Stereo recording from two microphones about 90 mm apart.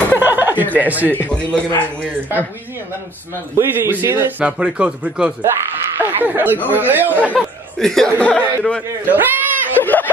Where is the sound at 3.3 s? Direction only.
25° right (ahead or behind).